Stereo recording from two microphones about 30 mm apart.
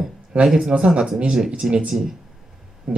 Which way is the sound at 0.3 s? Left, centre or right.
Right.